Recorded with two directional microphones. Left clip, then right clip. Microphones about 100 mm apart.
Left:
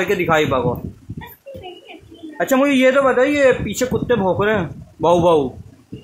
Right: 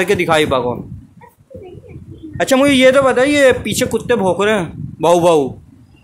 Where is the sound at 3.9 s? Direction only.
30° right (ahead or behind).